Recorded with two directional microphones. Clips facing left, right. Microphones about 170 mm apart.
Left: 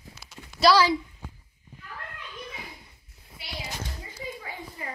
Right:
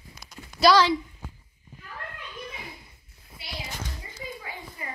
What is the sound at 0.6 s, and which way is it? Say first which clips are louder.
Speech: right 1 dB; 5° left (ahead or behind).